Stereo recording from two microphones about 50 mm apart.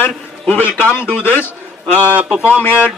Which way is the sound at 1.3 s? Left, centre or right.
Left.